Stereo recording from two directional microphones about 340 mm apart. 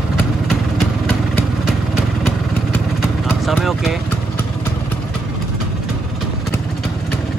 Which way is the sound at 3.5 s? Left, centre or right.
Centre.